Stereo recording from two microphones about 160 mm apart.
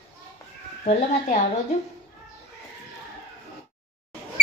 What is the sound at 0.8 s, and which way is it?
Speech, 45° left (ahead or behind).